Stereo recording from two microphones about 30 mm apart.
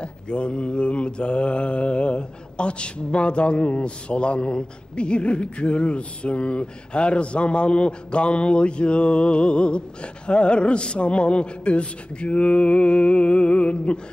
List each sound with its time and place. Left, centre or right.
0.0 s mantra: left